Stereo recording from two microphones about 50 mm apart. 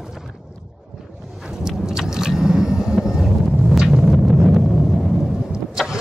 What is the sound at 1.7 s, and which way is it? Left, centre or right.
Vehicle, centre.